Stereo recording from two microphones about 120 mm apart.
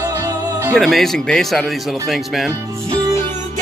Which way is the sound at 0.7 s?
Centre (ahead or behind).